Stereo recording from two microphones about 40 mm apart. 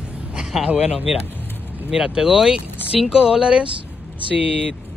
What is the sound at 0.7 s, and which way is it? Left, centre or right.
Speech, right.